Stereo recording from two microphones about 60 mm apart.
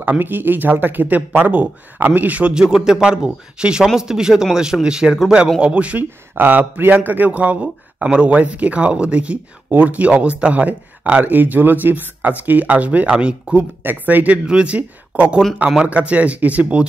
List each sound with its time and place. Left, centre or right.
0.0 s a man's voice: right
6.3 s a man's voice: right
13.8 s a man's voice: right